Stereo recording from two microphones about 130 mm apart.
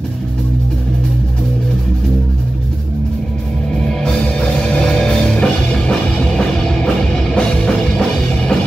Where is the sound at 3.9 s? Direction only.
5° left (ahead or behind).